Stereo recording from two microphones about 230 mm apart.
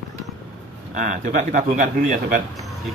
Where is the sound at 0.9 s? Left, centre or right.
Right.